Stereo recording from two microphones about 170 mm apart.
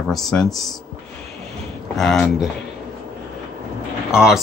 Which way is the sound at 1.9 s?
5° left (ahead or behind).